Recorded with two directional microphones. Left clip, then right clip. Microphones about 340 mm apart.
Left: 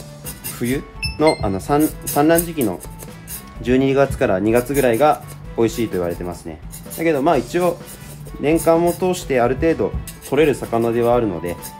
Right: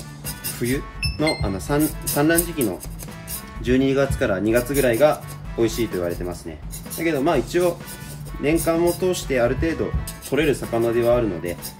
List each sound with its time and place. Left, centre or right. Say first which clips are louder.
0.6 s speech: left 2 dB; left